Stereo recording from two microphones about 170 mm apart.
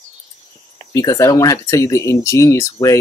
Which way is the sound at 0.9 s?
20° left (ahead or behind).